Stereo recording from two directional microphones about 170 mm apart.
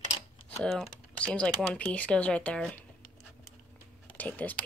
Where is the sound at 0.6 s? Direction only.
5° left (ahead or behind).